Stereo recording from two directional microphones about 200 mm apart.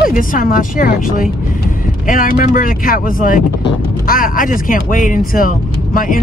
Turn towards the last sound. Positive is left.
turn(degrees=45)  # may be behind; listen again after turning